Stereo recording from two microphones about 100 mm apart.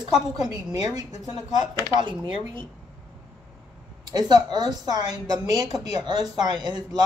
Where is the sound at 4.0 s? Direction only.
40° right (ahead or behind).